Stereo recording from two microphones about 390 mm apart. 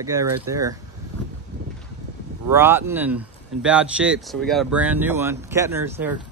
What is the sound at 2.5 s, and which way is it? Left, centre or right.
Speech, centre.